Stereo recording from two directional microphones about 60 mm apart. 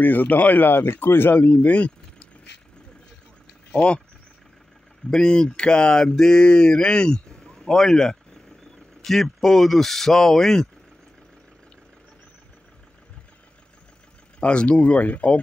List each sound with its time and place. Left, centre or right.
0.0 s speech: left
1.3 s speech: left
3.7 s speech: centre
5.1 s speech: centre
14.4 s speech: centre